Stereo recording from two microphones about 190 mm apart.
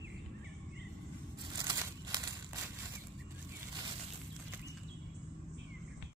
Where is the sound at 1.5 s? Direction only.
20° right (ahead or behind).